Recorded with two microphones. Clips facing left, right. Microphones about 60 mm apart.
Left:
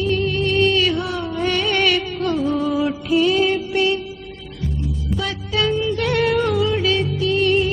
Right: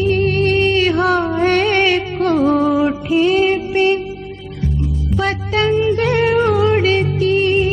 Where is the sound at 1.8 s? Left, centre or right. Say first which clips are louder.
Right 4 dB; right.